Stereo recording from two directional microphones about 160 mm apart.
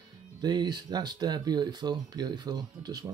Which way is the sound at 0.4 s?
25° right (ahead or behind).